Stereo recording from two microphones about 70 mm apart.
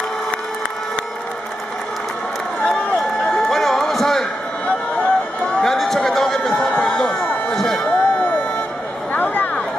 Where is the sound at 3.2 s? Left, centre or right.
Centre.